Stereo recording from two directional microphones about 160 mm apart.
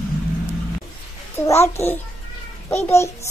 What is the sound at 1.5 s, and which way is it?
Speech, 15° left (ahead or behind).